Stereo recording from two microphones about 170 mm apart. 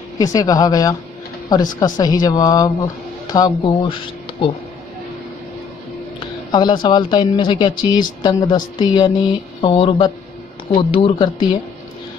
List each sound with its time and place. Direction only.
0.2 s speech: 20° left (ahead or behind)
6.1 s speech: 25° left (ahead or behind)